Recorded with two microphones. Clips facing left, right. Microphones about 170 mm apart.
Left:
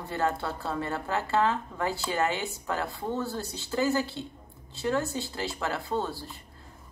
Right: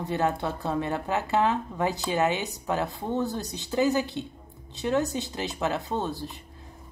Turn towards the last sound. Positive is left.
turn(degrees=-20)  # may be behind; listen again after turning